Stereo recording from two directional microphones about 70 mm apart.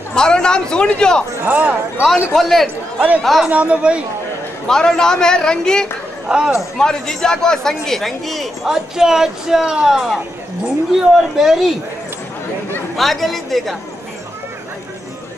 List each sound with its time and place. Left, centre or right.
0.1 s a man's voice: centre
1.4 s speech: right
2.3 s speech: centre
3.4 s speech: centre
4.6 s a man's voice: centre
6.2 s speech: centre
6.8 s speech: centre
11.1 s speech: centre
12.9 s speech: centre